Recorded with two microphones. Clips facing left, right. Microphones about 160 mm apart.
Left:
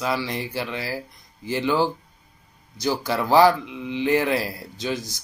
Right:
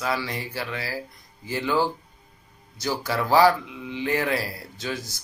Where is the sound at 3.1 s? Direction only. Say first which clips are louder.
Left 2 dB; 20° left (ahead or behind).